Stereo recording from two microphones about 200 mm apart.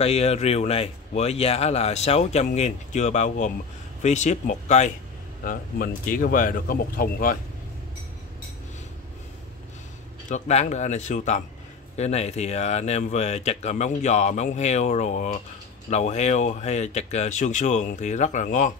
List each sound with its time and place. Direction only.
0.0 s speech: 30° left (ahead or behind)
10.3 s speech: 35° left (ahead or behind)